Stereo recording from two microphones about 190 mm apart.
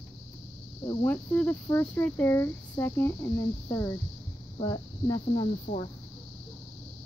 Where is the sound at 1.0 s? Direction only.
10° left (ahead or behind).